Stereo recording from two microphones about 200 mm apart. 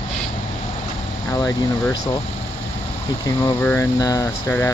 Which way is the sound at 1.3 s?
15° left (ahead or behind).